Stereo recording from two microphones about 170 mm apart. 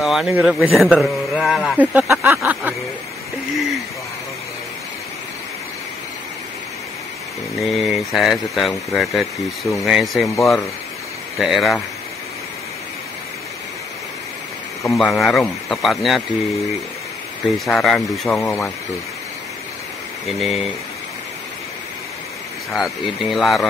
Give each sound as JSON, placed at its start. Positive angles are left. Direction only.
{"t": 0.0, "sound": "speech", "side_deg": 0}
{"t": 2.2, "sound": "a sound", "side_deg": -10}
{"t": 3.5, "sound": "speech", "side_deg": 0}
{"t": 7.5, "sound": "speech", "side_deg": 0}
{"t": 10.2, "sound": "speech", "side_deg": 15}
{"t": 11.3, "sound": "speech", "side_deg": 0}
{"t": 14.9, "sound": "speech", "side_deg": 0}
{"t": 17.6, "sound": "speech", "side_deg": 0}
{"t": 20.3, "sound": "speech", "side_deg": 0}
{"t": 22.8, "sound": "speech", "side_deg": 0}